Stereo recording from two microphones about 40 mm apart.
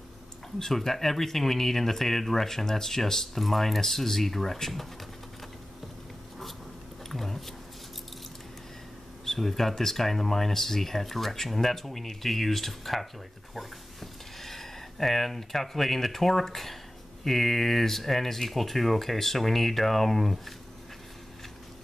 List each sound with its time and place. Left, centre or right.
0.6 s speech: centre
7.1 s speech: centre
9.2 s speech: centre
14.4 s speech: centre